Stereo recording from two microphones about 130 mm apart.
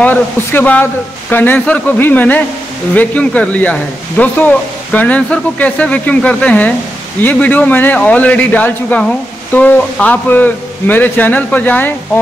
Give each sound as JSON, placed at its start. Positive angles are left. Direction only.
{"t": 0.0, "sound": "a man's voice", "side_deg": 15}